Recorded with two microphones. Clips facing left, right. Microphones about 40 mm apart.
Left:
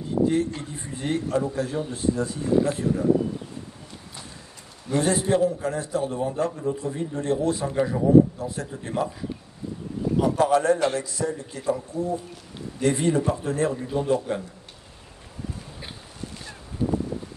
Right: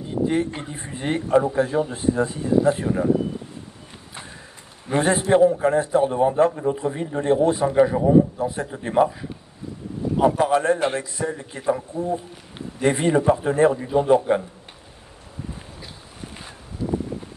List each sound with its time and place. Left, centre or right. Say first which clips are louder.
0.3 s a man's voice: right 1 dB; right
4.8 s a man's voice: right 3 dB; right
10.3 s a man's voice: right 1 dB; right